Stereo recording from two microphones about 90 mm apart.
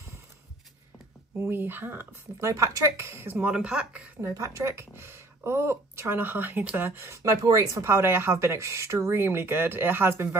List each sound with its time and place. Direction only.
1.4 s speech: 25° right (ahead or behind)
2.5 s speech: 35° right (ahead or behind); by 4.1 s 10° right (ahead or behind)
4.2 s speech: 35° right (ahead or behind)